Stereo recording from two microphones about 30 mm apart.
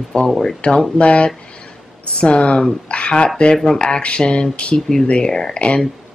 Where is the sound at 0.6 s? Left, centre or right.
Left.